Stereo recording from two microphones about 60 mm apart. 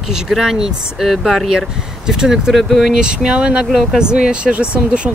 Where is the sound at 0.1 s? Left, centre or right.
Centre.